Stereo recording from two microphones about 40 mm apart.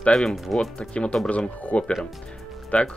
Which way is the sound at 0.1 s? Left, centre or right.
Centre.